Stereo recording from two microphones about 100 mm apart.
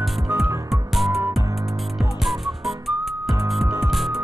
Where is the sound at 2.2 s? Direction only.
Centre (ahead or behind).